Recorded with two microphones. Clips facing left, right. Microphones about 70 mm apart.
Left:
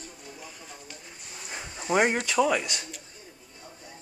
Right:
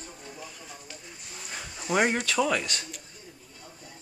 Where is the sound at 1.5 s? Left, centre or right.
Left.